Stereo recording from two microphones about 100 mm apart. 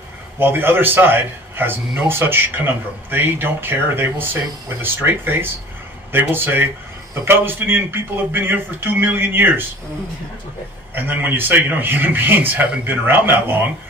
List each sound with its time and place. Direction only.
0.4 s a man's voice: 20° right (ahead or behind)
11.0 s a man's voice: 20° right (ahead or behind)